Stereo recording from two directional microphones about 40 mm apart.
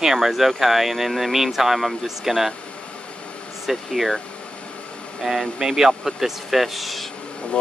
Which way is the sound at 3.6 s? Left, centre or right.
Centre.